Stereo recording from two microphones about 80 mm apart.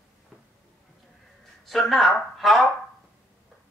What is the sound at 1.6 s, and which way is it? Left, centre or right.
Speech, centre.